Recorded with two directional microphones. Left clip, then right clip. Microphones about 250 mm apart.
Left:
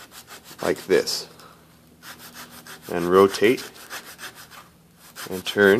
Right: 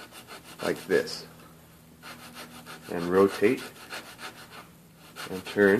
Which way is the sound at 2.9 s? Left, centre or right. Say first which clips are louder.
Left 6 dB; left.